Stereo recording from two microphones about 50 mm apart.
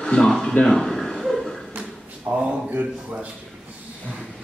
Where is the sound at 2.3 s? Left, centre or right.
Centre.